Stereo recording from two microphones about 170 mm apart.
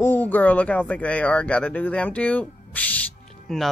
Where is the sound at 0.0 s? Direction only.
10° left (ahead or behind).